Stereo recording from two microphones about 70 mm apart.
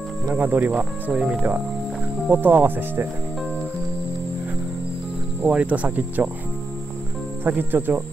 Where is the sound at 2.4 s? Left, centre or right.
Right.